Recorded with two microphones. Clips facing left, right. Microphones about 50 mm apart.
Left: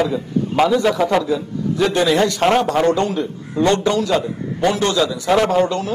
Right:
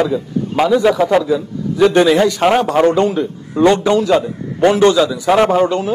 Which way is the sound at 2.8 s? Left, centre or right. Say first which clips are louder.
Right 4 dB; right.